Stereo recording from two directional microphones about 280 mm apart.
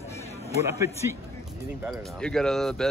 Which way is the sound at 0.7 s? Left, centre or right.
Centre.